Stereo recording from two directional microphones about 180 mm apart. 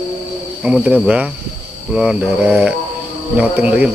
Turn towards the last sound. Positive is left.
turn(degrees=-5)  # may be behind; listen again after turning